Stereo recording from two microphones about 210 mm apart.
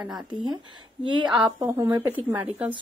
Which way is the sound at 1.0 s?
20° right (ahead or behind).